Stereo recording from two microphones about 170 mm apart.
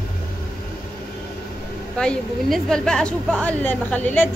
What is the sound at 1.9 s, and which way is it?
A woman's voice, 5° left (ahead or behind).